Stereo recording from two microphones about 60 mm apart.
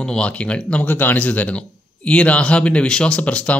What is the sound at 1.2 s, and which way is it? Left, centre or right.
Speech, left.